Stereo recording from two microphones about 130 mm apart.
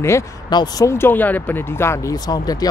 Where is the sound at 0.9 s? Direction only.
15° left (ahead or behind).